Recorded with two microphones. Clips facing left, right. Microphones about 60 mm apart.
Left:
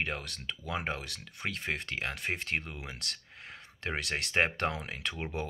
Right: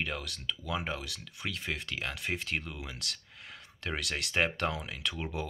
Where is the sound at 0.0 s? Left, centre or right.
Left.